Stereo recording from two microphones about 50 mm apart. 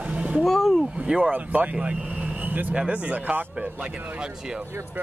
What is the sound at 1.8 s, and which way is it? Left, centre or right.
Vehicle, right.